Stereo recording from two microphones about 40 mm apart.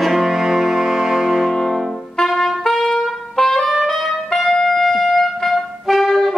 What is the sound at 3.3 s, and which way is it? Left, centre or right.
Music, centre.